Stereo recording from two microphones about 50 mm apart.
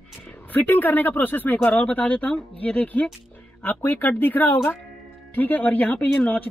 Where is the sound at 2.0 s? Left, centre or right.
Left.